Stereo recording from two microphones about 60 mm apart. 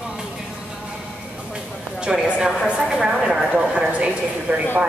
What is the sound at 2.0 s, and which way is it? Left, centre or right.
Speech, centre.